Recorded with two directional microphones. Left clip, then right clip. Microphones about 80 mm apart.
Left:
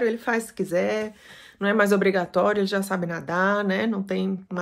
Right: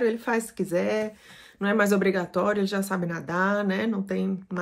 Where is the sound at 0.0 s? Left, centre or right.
Centre.